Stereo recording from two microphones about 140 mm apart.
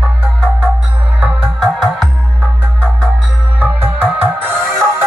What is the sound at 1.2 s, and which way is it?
Music, 5° right (ahead or behind).